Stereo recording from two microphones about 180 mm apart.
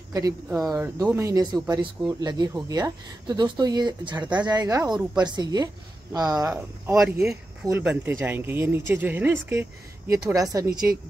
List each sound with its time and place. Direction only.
0.1 s speech: 20° right (ahead or behind)
4.9 s speech: 5° right (ahead or behind)
5.3 s speech: 20° right (ahead or behind)